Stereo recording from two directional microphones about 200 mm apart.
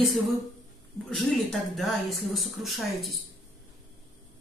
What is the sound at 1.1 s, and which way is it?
Speech, centre (ahead or behind).